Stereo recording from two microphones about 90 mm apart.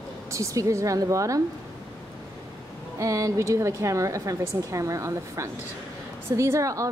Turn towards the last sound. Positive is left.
turn(degrees=-35)  # may be behind; listen again after turning